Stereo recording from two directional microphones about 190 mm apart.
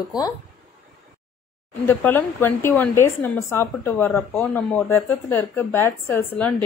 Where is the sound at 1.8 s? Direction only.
10° left (ahead or behind).